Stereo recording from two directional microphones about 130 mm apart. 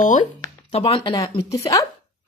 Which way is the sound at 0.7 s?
50° left (ahead or behind).